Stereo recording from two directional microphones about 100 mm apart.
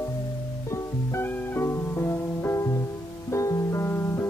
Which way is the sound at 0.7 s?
25° left (ahead or behind).